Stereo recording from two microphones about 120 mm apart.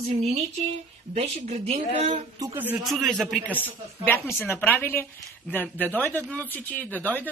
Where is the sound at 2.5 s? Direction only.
15° right (ahead or behind).